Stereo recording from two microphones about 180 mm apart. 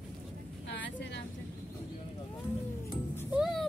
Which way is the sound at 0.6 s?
80° left.